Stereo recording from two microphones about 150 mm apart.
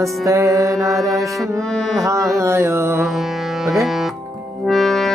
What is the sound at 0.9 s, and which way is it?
Music, centre (ahead or behind).